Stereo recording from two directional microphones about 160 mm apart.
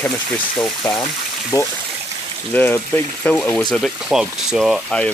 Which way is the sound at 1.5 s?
20° left (ahead or behind).